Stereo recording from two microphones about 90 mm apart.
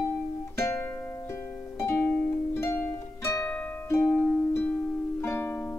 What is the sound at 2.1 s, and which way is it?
Harp, 25° left (ahead or behind).